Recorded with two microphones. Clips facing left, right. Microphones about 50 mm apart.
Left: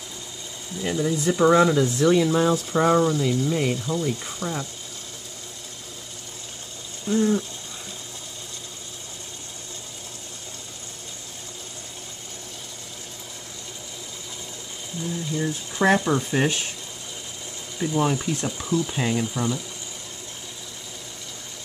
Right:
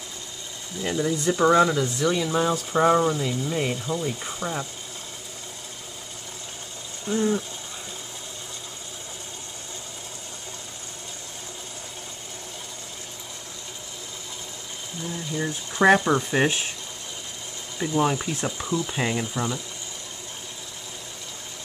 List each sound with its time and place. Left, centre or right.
0.7 s speech: centre
7.1 s speech: centre
15.0 s speech: centre
17.7 s speech: centre